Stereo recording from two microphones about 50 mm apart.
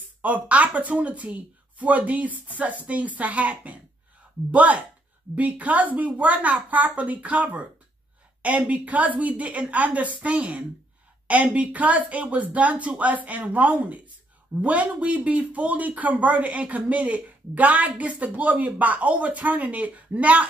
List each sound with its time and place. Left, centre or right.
0.2 s speech: right